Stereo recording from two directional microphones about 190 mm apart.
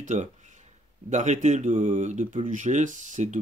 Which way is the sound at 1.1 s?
40° right (ahead or behind).